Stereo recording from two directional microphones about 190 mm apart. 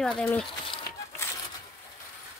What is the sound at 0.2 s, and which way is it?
Speech, 10° left (ahead or behind).